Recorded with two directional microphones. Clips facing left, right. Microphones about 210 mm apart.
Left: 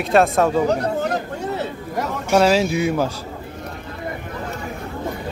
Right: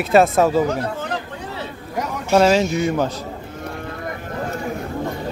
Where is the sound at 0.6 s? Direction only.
35° left (ahead or behind).